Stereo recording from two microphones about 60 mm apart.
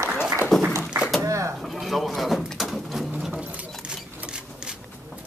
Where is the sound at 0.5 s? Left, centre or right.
Centre.